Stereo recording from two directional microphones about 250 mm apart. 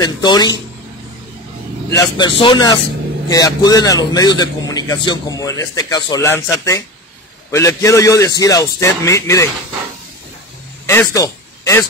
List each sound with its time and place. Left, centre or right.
0.0 s a man's voice: centre
1.9 s a man's voice: centre
10.9 s speech: centre